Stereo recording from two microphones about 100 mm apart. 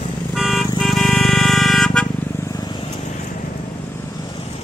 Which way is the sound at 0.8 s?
Centre (ahead or behind).